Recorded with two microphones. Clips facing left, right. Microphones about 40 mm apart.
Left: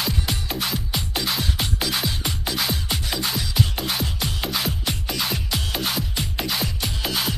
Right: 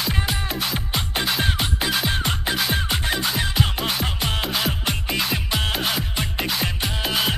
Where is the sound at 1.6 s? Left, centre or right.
Right.